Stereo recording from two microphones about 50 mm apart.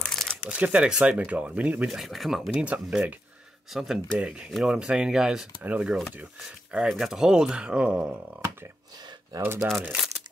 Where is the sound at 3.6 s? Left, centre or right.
Centre.